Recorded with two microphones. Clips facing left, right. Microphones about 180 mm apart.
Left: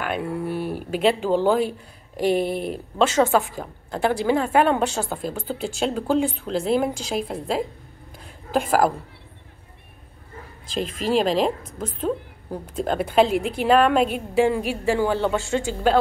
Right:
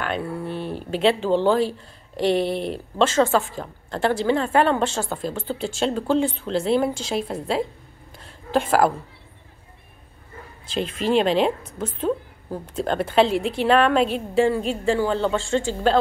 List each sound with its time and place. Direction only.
0.0 s a woman's voice: 10° left (ahead or behind)
1.6 s speech: 55° left (ahead or behind)
3.2 s a woman's voice: 15° left (ahead or behind)
8.2 s a sound: centre (ahead or behind)
10.7 s speech: centre (ahead or behind)
12.8 s a woman's voice: 5° left (ahead or behind)